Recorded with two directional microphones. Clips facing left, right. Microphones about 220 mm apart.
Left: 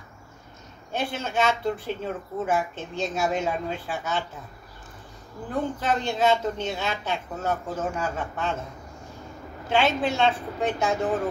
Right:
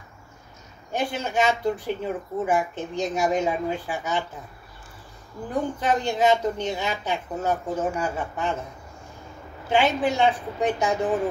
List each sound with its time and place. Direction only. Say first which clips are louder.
0.9 s speech: right 2 dB; 15° right (ahead or behind)
5.5 s speech: right 2 dB; 15° right (ahead or behind)
9.7 s speech: right 2 dB; 15° right (ahead or behind)